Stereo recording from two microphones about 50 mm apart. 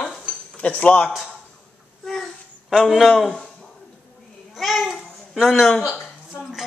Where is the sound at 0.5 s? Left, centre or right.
Left.